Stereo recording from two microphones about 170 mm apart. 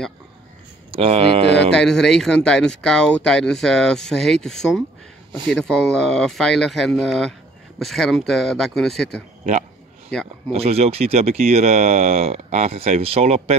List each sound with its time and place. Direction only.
0.9 s speech: 35° right (ahead or behind)
1.7 s speech: 5° left (ahead or behind)
10.5 s speech: 35° right (ahead or behind)